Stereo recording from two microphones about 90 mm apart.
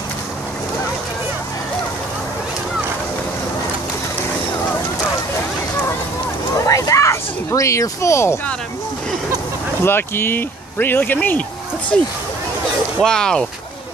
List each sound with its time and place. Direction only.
6.6 s a sound: 35° left (ahead or behind)
9.8 s speech: 25° left (ahead or behind)
11.9 s speech: 5° left (ahead or behind)